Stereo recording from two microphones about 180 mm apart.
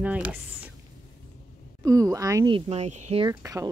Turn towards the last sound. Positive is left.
turn(degrees=-20)  # may be behind; listen again after turning